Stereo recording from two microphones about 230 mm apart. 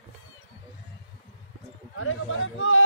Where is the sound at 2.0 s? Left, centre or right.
Left.